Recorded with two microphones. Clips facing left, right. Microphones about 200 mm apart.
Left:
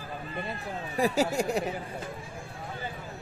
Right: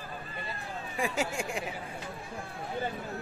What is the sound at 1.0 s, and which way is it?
Speech, 40° left (ahead or behind).